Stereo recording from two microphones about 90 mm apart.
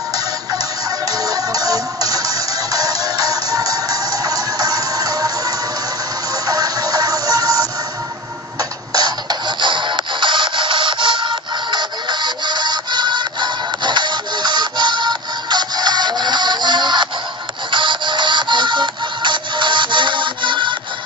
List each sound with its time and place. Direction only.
1.0 s music: 45° right (ahead or behind)
6.4 s music: 45° right (ahead or behind)
8.9 s music: 50° right (ahead or behind)